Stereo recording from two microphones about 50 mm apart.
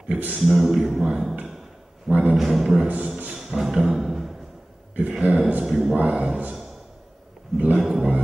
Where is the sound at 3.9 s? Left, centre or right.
Centre.